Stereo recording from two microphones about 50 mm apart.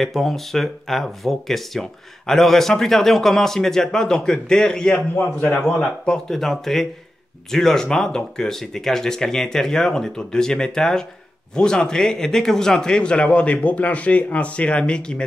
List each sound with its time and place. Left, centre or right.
0.0 s speech: centre
4.9 s a man's voice: left
5.8 s a man's voice: centre